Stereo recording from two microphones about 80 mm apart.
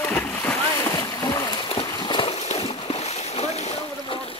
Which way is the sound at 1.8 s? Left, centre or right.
Left.